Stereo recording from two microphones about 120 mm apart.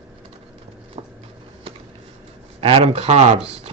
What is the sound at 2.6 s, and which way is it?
Speech, 50° right (ahead or behind).